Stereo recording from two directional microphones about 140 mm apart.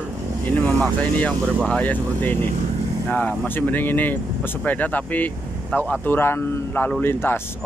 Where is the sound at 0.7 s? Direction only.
5° left (ahead or behind).